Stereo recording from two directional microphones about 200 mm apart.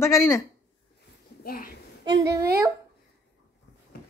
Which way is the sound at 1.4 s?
45° left (ahead or behind).